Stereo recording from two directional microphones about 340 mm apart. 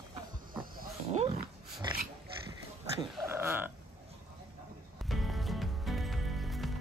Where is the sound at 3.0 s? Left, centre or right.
Centre.